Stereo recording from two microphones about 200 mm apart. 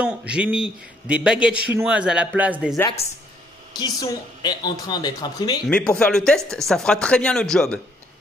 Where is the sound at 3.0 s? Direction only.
30° left (ahead or behind).